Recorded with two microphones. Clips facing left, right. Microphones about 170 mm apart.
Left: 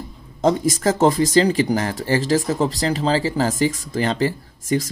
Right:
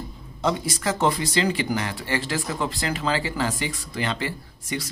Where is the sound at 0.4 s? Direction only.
45° left (ahead or behind).